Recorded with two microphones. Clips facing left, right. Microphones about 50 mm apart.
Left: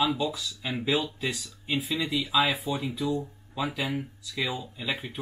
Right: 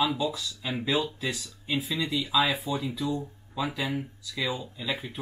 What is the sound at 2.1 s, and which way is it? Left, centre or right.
Speech, left.